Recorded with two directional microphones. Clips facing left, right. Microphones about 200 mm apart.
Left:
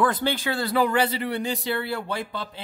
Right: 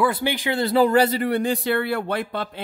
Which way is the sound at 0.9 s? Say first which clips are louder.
Right 5 dB; 40° right (ahead or behind).